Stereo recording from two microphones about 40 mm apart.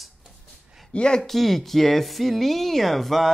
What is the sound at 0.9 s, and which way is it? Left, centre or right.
Speech, left.